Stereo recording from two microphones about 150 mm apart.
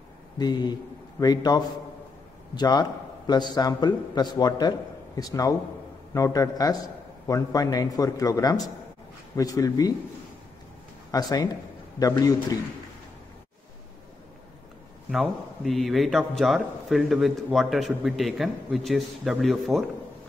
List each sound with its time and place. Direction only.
0.4 s a man's voice: 30° left (ahead or behind)
11.1 s a man's voice: 25° left (ahead or behind)
15.0 s a man's voice: centre (ahead or behind)